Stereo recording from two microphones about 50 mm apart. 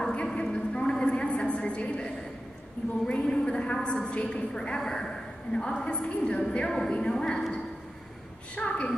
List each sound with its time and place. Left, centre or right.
0.0 s a sound: centre
3.1 s a woman's voice: centre
8.5 s a woman's voice: left